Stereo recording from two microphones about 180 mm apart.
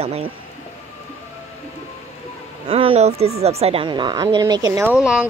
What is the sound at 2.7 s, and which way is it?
A woman's voice, 30° right (ahead or behind).